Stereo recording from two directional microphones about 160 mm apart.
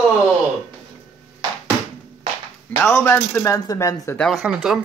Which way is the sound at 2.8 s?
15° left (ahead or behind).